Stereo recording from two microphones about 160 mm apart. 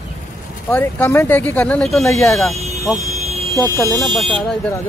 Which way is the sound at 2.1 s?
20° left (ahead or behind).